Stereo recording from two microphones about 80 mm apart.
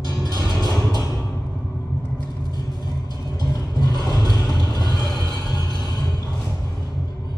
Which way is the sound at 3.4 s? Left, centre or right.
Left.